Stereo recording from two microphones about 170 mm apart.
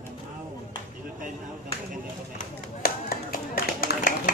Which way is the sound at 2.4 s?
55° left (ahead or behind).